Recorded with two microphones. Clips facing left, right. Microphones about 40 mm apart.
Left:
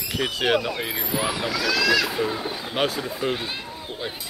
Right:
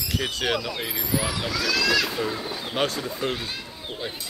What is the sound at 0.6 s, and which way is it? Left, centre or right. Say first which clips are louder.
Speech: left 3 dB; left.